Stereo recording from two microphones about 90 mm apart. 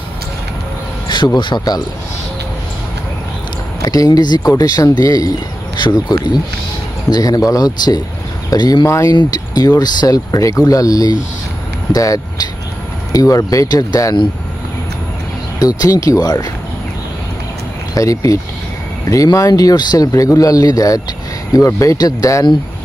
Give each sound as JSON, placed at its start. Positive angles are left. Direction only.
{"t": 1.0, "sound": "speech", "side_deg": 55}
{"t": 3.8, "sound": "speech", "side_deg": 40}
{"t": 5.8, "sound": "speech", "side_deg": 55}
{"t": 7.1, "sound": "speech", "side_deg": 45}
{"t": 8.8, "sound": "speech", "side_deg": 35}
{"t": 9.1, "sound": "speech", "side_deg": 45}
{"t": 15.6, "sound": "speech", "side_deg": 45}
{"t": 17.9, "sound": "speech", "side_deg": 40}